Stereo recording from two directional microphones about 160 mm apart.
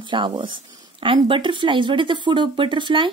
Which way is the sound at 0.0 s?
30° right (ahead or behind).